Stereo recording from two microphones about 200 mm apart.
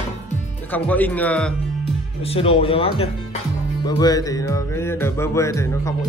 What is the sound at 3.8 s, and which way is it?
Speech, 20° left (ahead or behind).